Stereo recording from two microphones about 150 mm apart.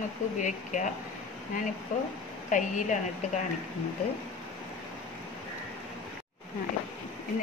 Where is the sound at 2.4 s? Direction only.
55° left (ahead or behind).